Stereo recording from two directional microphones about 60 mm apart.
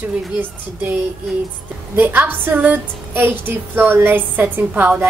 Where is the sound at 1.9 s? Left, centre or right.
Right.